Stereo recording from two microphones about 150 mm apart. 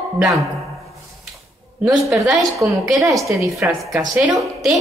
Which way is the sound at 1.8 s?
Centre (ahead or behind).